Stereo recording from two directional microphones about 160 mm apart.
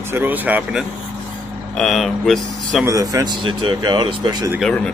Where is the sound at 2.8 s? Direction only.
20° right (ahead or behind).